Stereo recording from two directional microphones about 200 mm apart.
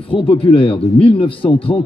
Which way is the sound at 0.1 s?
25° left (ahead or behind).